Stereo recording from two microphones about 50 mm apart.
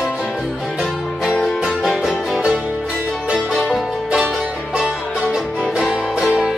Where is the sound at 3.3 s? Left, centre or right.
Right.